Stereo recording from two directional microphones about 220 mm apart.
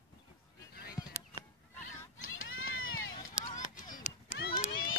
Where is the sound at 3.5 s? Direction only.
35° left (ahead or behind).